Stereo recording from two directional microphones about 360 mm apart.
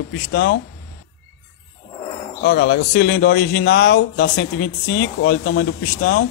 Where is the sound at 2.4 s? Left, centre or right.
Left.